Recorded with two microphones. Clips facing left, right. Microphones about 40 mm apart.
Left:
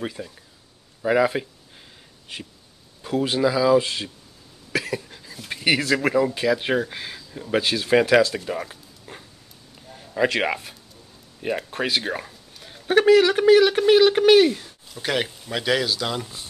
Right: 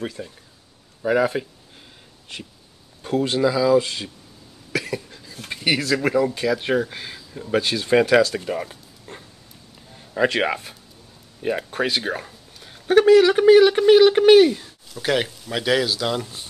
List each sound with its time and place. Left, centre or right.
0.2 s speech: centre
1.0 s speech: centre
3.2 s speech: centre
4.7 s cough: centre
5.5 s speech: centre
8.5 s a sound: centre
9.9 s speech: centre